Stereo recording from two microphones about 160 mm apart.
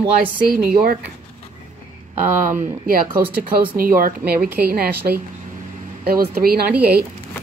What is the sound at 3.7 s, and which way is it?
A woman's voice, 60° right (ahead or behind).